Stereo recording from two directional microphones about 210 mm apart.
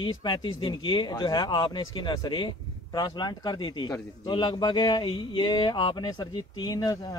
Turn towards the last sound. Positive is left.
turn(degrees=20)  # may be behind; listen again after turning